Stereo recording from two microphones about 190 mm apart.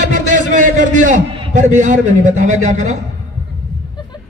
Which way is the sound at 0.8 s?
40° right (ahead or behind).